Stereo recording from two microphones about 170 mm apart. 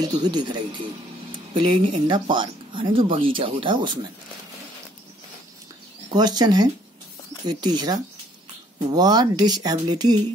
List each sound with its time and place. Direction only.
0.1 s speech: 25° right (ahead or behind)
6.0 s speech: 25° right (ahead or behind)